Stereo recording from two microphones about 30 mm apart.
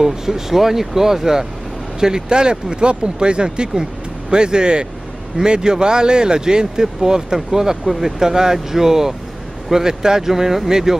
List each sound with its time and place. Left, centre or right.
0.0 s speech: centre